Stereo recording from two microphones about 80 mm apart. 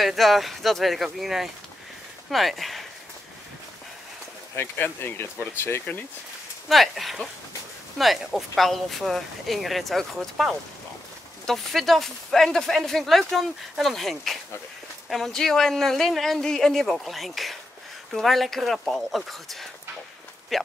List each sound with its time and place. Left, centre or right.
0.0 s speech: centre
4.6 s speech: left
6.7 s speech: centre